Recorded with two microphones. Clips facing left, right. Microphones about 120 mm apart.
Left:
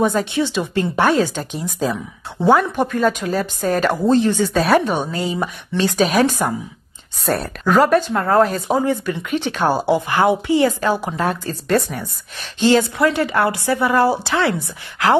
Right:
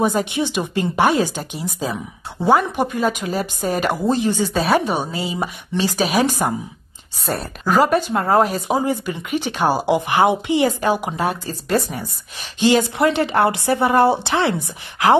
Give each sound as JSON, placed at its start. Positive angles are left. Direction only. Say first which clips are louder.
{"t": 0.0, "sound": "speech", "louder": "left 1 dB", "side_deg": -15}
{"t": 4.6, "sound": "speech", "louder": "left 2 dB", "side_deg": 0}
{"t": 8.1, "sound": "speech", "louder": "left 1 dB", "side_deg": -20}
{"t": 12.5, "sound": "a woman's voice", "louder": "left 1 dB", "side_deg": -15}